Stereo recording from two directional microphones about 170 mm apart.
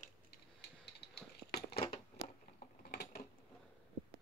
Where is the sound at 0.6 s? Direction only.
75° left (ahead or behind).